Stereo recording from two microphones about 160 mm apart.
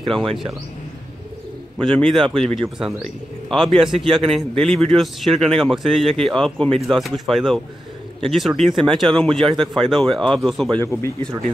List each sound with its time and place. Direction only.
1.8 s speech: 5° left (ahead or behind)
10.8 s speech: 15° left (ahead or behind)